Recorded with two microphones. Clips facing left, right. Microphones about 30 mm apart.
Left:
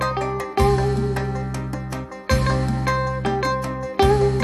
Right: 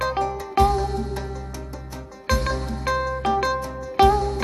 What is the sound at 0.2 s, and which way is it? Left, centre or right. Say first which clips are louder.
Music: right 1 dB; left.